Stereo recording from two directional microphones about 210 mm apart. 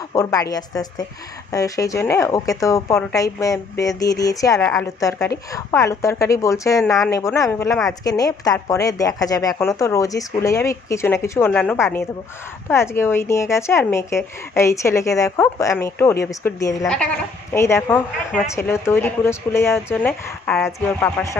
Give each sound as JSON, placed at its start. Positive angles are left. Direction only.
{"t": 0.1, "sound": "a woman's voice", "side_deg": 15}
{"t": 16.8, "sound": "a woman's voice", "side_deg": 5}